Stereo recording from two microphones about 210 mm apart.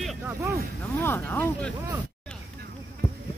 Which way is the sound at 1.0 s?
10° left (ahead or behind).